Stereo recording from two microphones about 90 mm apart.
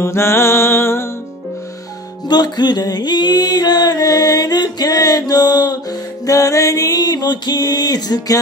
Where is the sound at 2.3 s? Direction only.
55° left (ahead or behind).